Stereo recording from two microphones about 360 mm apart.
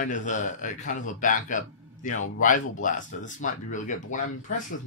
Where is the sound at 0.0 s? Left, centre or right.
Left.